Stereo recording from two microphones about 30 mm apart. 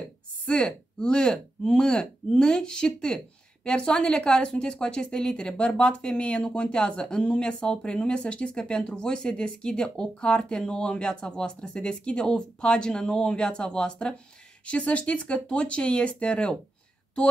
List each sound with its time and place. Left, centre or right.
0.5 s a woman's voice: left
6.7 s a woman's voice: left
14.7 s speech: left